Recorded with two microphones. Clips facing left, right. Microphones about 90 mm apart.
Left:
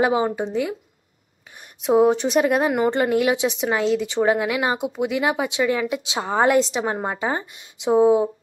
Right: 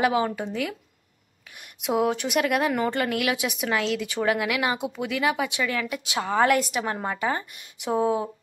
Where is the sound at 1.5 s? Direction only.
30° left (ahead or behind).